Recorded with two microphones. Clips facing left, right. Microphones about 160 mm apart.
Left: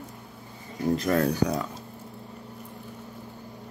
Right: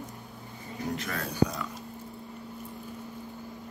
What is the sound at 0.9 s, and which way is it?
Speech, 40° left (ahead or behind).